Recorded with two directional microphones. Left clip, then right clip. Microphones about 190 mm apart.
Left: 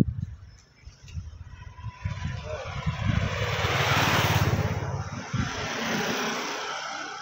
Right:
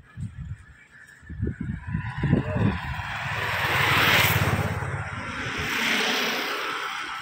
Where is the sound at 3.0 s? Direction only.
60° left (ahead or behind).